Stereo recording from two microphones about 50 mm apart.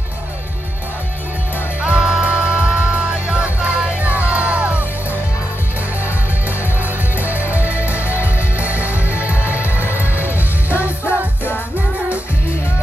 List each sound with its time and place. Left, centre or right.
1.8 s music: centre
7.2 s music: right
10.2 s music: left